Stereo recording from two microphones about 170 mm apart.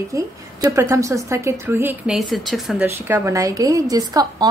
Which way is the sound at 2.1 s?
Centre (ahead or behind).